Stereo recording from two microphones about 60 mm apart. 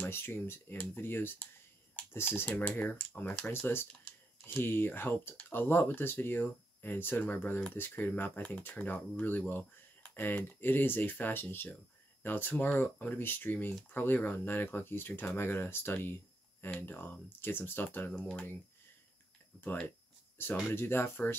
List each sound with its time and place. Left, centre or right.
0.1 s speech: left
18.1 s speech: centre
19.5 s speech: centre
20.3 s speech: left